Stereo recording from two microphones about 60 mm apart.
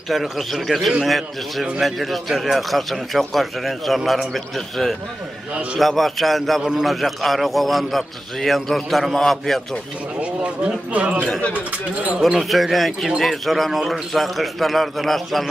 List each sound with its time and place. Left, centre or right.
0.1 s a man's voice: centre
10.4 s speech: centre
12.2 s a man's voice: centre